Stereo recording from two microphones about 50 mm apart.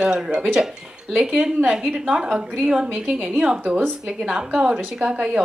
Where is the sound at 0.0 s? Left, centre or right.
Centre.